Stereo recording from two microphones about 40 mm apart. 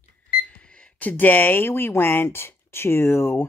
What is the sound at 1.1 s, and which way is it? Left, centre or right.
Speech, left.